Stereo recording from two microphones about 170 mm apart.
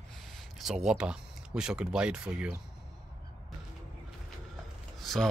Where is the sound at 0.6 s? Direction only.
5° right (ahead or behind).